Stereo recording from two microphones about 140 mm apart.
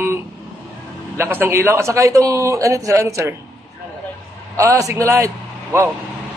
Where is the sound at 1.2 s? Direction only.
15° right (ahead or behind).